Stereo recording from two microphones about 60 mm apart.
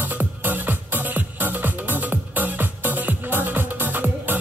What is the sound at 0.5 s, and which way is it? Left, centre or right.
Music, right.